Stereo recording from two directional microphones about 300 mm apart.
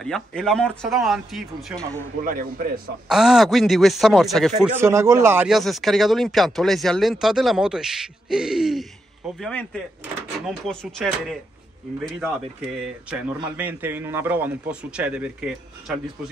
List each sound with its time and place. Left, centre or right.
0.0 s speech: centre
2.2 s a man's voice: right
3.1 s speech: centre
12.8 s speech: centre